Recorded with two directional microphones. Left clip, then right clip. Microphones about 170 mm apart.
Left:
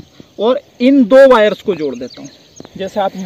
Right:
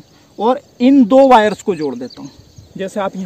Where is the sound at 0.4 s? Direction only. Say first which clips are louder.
Left 1 dB; 40° right (ahead or behind).